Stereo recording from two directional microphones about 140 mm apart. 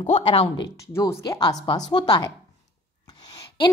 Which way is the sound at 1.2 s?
30° left (ahead or behind).